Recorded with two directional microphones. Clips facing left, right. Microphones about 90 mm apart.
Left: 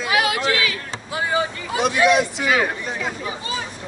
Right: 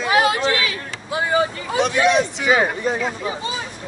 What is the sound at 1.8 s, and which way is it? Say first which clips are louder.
Speech: even; 5° left (ahead or behind).